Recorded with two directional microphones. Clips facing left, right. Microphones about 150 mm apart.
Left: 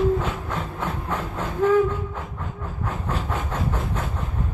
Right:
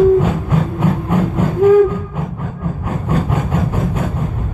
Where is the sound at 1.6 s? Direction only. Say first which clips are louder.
Right 9 dB; 10° right (ahead or behind).